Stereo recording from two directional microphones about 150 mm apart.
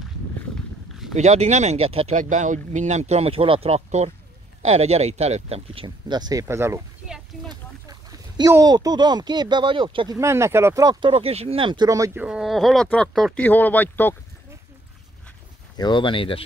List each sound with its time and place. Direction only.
1.1 s speech: 50° right (ahead or behind)
5.9 s speech: 30° right (ahead or behind)
10.1 s speech: 20° right (ahead or behind)
12.2 s speech: 5° right (ahead or behind); by 14.1 s 10° left (ahead or behind)
15.8 s speech: 35° left (ahead or behind)